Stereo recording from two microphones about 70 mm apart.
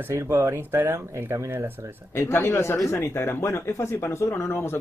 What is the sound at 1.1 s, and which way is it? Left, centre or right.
Speech, right.